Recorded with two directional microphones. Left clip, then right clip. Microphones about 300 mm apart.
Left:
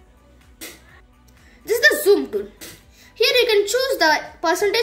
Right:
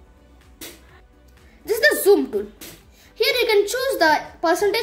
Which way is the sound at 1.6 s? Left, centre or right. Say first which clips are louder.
Left 2 dB; centre.